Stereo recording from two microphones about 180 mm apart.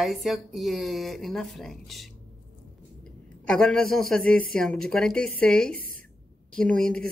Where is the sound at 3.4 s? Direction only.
5° left (ahead or behind).